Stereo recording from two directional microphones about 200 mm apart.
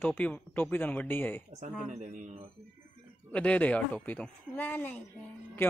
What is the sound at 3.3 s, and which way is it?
Speech, 5° left (ahead or behind).